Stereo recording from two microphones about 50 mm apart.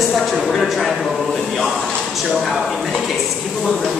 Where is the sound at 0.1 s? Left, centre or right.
Centre.